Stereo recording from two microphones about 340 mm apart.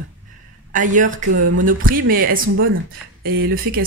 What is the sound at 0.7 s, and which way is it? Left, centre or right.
A woman's voice, right.